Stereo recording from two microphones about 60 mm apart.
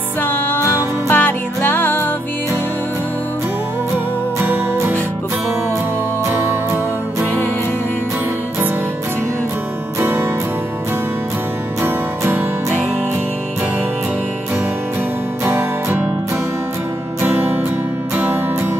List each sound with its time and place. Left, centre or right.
0.2 s music: left
3.9 s music: right
9.9 s music: right
11.8 s music: right
15.4 s music: right
17.2 s music: right